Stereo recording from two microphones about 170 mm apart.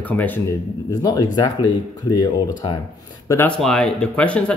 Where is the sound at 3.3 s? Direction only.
15° left (ahead or behind).